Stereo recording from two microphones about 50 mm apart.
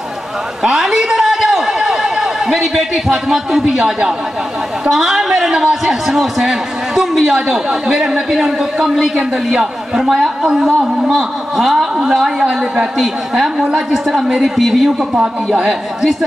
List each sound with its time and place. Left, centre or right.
0.6 s a sound: centre
4.8 s a man's voice: centre
15.1 s speech: right
16.0 s a man's voice: centre